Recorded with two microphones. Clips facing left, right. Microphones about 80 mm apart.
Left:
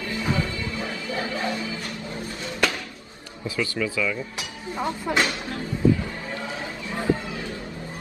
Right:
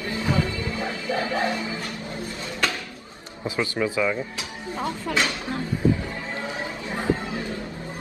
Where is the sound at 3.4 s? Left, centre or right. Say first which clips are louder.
Right 2 dB; right.